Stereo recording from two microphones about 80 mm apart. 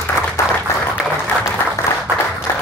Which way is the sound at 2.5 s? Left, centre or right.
Left.